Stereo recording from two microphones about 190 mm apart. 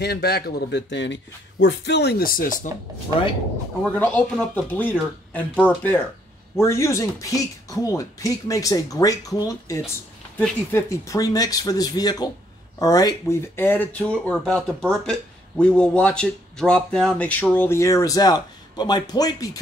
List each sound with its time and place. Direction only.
0.0 s speech: 55° left (ahead or behind)
3.8 s speech: 10° left (ahead or behind)